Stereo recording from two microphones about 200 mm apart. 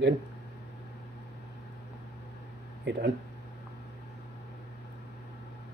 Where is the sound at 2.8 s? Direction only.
55° right (ahead or behind).